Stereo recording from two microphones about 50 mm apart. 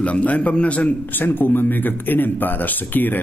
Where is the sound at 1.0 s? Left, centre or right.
Left.